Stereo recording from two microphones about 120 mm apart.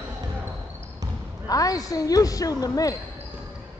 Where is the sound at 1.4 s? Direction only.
30° left (ahead or behind).